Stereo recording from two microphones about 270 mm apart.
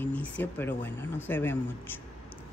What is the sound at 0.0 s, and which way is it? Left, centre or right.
Speech, centre.